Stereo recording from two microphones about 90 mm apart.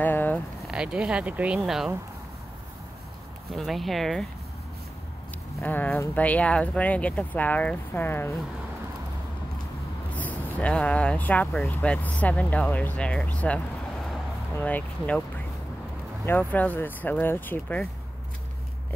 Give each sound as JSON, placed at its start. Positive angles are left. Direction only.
{"t": 0.0, "sound": "a sound", "side_deg": 20}
{"t": 0.7, "sound": "speech", "side_deg": -10}
{"t": 1.6, "sound": "speech", "side_deg": -5}
{"t": 3.5, "sound": "speech", "side_deg": 0}
{"t": 5.6, "sound": "speech", "side_deg": 20}
{"t": 10.1, "sound": "speech", "side_deg": 15}
{"t": 14.6, "sound": "speech", "side_deg": 15}
{"t": 16.3, "sound": "speech", "side_deg": 20}